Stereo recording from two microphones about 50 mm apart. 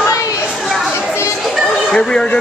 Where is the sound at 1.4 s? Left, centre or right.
Centre.